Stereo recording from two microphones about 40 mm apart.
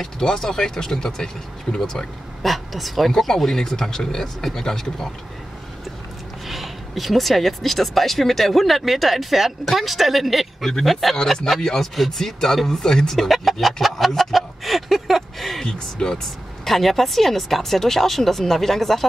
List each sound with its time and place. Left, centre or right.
0.0 s speech: centre
2.4 s speech: centre
6.4 s speech: centre
13.1 s a sound: centre
15.6 s speech: centre
16.6 s speech: centre